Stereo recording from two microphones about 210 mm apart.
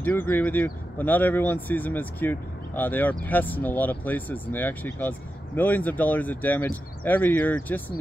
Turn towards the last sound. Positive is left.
turn(degrees=10)  # may be behind; listen again after turning